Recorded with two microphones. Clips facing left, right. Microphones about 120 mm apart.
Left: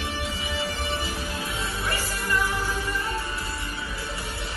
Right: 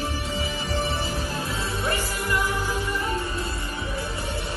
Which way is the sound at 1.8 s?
20° right (ahead or behind).